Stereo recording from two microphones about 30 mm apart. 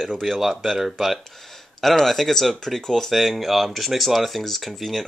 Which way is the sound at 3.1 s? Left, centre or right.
Centre.